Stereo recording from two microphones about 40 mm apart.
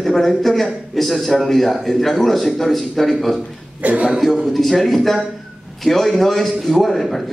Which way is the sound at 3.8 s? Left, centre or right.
Right.